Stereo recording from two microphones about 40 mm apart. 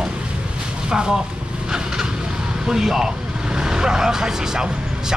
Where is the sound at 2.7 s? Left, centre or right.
Centre.